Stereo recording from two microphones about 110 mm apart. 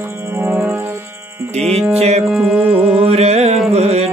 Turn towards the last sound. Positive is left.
turn(degrees=-75)  # may be behind; listen again after turning